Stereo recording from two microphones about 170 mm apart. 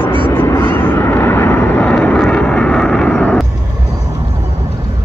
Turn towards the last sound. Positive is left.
turn(degrees=5)  # may be behind; listen again after turning